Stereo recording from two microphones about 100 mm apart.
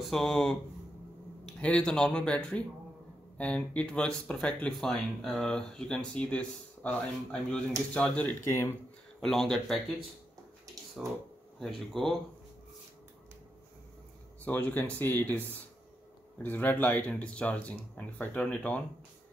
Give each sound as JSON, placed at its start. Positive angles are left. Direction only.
{"t": 0.1, "sound": "speech", "side_deg": 5}
{"t": 1.6, "sound": "speech", "side_deg": 10}
{"t": 11.6, "sound": "speech", "side_deg": 5}
{"t": 14.4, "sound": "speech", "side_deg": 15}
{"t": 16.4, "sound": "speech", "side_deg": 20}